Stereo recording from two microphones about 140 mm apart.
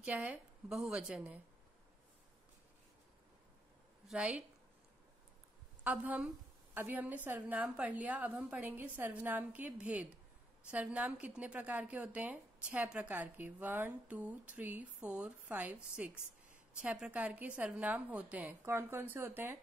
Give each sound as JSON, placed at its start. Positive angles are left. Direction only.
{"t": 0.0, "sound": "a woman's voice", "side_deg": -10}
{"t": 4.1, "sound": "a woman's voice", "side_deg": -10}
{"t": 5.9, "sound": "a woman's voice", "side_deg": -10}